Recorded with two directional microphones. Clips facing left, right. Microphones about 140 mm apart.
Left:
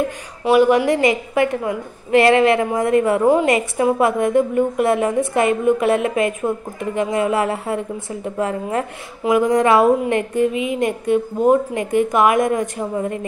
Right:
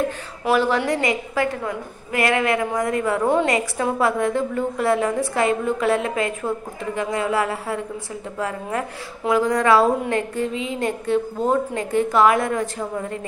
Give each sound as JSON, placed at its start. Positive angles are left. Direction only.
{"t": 0.6, "sound": "a woman's voice", "side_deg": 15}